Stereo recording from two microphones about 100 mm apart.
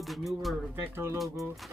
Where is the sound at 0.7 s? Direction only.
25° right (ahead or behind).